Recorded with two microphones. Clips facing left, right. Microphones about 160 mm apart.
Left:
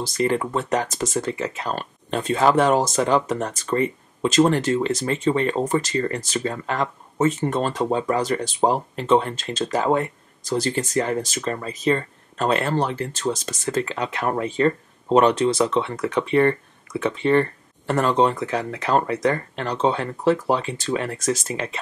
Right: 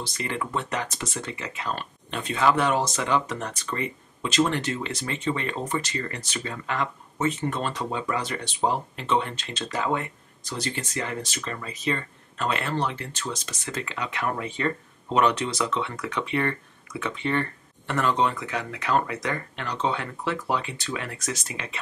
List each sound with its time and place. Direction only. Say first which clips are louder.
0.0 s speech: left 9 dB; 35° left (ahead or behind)